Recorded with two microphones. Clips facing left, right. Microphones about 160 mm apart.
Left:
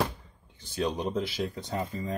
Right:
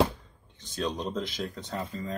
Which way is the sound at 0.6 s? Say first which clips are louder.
Left 2 dB; 10° left (ahead or behind).